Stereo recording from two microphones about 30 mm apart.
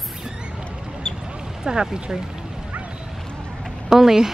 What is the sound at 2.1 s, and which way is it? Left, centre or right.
Speech, right.